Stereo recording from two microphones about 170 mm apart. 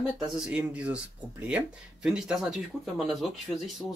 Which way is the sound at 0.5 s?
5° right (ahead or behind).